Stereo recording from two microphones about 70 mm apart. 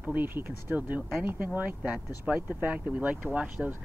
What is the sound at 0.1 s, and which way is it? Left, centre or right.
Speech, right.